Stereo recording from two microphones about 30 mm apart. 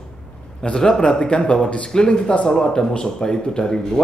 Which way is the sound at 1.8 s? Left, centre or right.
Left.